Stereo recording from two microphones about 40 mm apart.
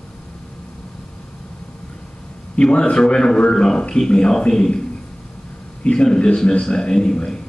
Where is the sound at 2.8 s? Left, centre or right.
Centre.